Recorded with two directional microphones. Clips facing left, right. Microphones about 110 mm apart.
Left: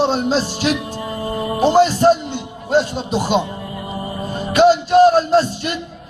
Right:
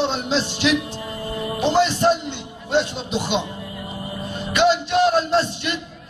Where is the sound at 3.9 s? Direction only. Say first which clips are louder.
Left 6 dB; 40° left (ahead or behind).